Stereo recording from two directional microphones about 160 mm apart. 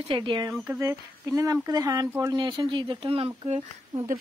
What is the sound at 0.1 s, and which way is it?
Speech, 30° right (ahead or behind).